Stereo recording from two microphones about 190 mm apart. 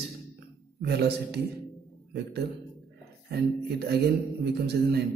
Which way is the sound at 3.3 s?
60° right (ahead or behind).